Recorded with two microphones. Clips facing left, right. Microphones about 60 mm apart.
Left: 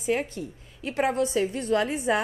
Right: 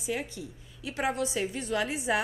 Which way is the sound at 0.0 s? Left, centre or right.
Left.